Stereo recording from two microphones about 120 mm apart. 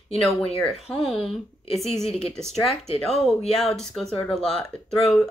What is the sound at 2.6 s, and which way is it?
Speech, 50° left (ahead or behind).